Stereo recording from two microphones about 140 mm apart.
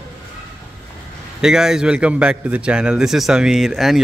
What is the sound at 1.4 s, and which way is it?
A man's voice, 5° right (ahead or behind).